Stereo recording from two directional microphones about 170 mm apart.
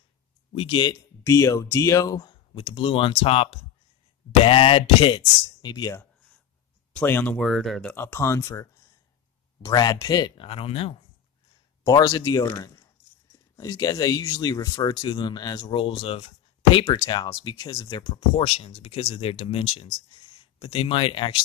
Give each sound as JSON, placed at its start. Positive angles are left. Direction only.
{"t": 0.5, "sound": "speech", "side_deg": 30}
{"t": 7.0, "sound": "speech", "side_deg": 10}
{"t": 7.9, "sound": "speech", "side_deg": 15}
{"t": 11.8, "sound": "speech", "side_deg": 20}